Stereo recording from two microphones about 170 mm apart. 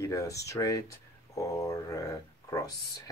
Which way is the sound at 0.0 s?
20° left (ahead or behind).